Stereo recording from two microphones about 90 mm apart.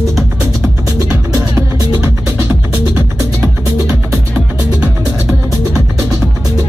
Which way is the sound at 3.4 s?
10° right (ahead or behind).